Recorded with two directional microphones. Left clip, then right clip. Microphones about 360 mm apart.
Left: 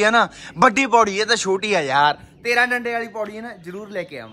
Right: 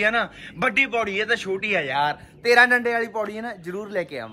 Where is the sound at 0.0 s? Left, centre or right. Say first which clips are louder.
Left 5 dB; centre.